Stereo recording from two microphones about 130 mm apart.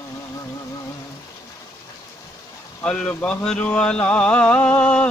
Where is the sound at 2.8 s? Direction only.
10° left (ahead or behind).